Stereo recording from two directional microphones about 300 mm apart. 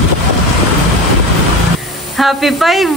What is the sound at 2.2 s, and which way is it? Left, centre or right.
Speech, centre.